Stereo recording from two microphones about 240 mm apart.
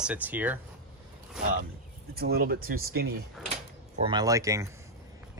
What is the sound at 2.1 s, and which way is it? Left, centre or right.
Speech, right.